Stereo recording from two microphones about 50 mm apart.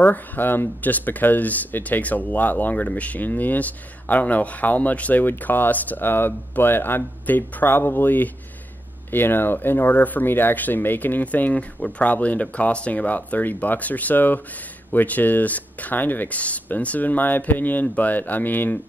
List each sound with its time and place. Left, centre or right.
0.0 s speech: left